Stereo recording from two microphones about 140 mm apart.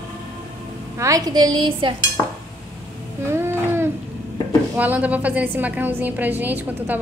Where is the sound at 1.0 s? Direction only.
25° right (ahead or behind).